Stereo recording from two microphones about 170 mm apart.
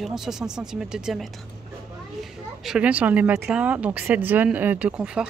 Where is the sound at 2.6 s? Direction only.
5° right (ahead or behind).